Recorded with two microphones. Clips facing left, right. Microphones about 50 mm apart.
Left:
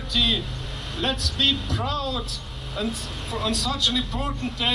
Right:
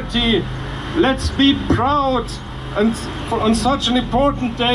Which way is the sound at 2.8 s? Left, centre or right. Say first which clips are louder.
Right 11 dB; right.